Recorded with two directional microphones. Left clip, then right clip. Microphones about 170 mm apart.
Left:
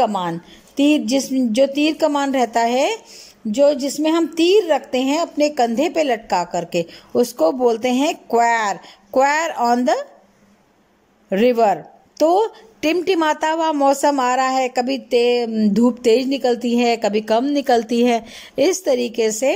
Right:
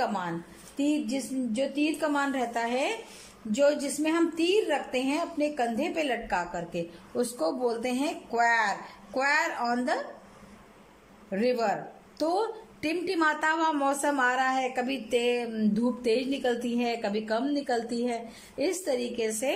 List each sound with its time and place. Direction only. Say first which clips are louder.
0.0 s a woman's voice: left 11 dB; 40° left (ahead or behind)
11.2 s a woman's voice: left 12 dB; 45° left (ahead or behind); by 15.7 s 25° left (ahead or behind)
15.7 s a woman's voice: left 12 dB; 35° left (ahead or behind)